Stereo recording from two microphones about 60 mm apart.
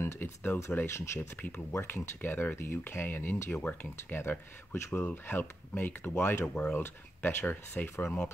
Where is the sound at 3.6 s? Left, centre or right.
Left.